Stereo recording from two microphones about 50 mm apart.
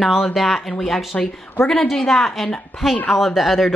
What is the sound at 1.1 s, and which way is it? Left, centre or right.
Speech, left.